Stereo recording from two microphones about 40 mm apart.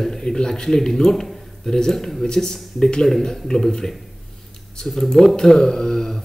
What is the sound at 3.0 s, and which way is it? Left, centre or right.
Speech, centre.